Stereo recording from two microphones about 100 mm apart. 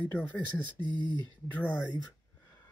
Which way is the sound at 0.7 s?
50° right (ahead or behind).